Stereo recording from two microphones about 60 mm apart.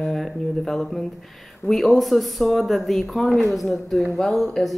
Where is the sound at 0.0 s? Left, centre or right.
Centre.